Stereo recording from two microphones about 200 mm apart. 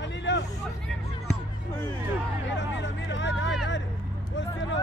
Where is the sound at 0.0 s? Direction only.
60° left (ahead or behind).